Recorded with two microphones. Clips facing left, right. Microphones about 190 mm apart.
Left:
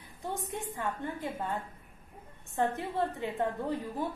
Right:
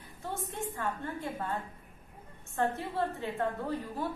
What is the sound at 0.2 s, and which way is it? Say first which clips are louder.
A woman's voice: left 1 dB; 15° left (ahead or behind).